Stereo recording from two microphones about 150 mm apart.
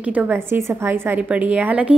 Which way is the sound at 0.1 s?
10° right (ahead or behind).